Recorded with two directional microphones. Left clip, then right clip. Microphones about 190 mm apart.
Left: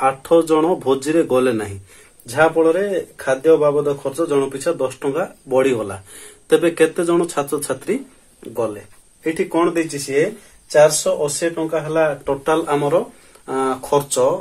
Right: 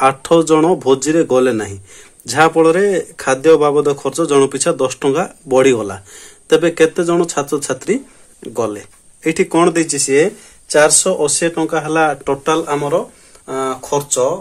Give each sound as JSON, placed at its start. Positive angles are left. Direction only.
{"t": 0.0, "sound": "speech", "side_deg": -40}
{"t": 2.2, "sound": "speech", "side_deg": -50}
{"t": 12.4, "sound": "speech", "side_deg": -25}